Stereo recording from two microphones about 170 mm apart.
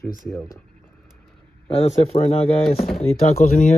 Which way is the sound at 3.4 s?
50° left (ahead or behind).